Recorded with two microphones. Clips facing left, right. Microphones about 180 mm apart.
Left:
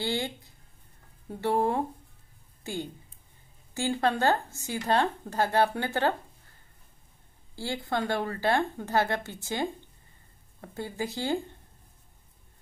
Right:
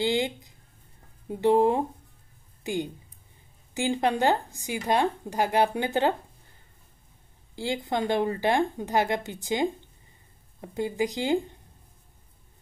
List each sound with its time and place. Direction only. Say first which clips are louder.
0.0 s a woman's voice: right 5 dB; 15° right (ahead or behind)
7.5 s speech: right 3 dB; 15° right (ahead or behind)